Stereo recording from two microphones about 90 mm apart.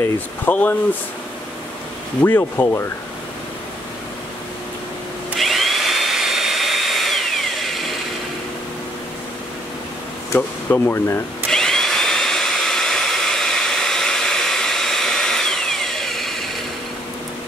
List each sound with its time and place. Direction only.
0.5 s speech: 20° left (ahead or behind)
2.2 s speech: 25° left (ahead or behind)
5.4 s drill: centre (ahead or behind)
10.7 s speech: 25° left (ahead or behind)
11.5 s vacuum cleaner: 5° left (ahead or behind)